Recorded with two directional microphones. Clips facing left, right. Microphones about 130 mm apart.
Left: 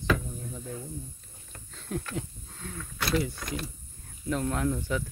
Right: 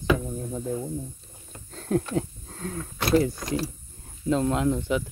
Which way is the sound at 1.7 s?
40° right (ahead or behind).